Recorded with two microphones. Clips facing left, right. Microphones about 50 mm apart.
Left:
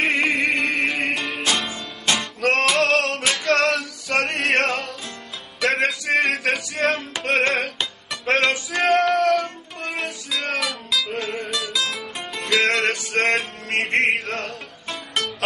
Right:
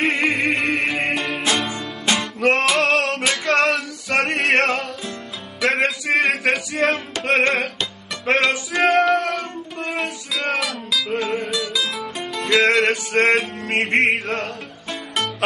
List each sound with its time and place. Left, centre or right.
0.0 s music: centre
3.3 s female singing: centre
4.5 s music: centre
13.7 s music: right
14.2 s music: centre